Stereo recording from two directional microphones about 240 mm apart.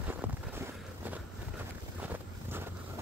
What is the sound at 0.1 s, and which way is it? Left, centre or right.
Vehicle, centre.